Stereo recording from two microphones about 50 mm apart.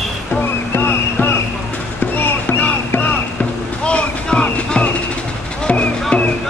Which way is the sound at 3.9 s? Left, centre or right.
Left.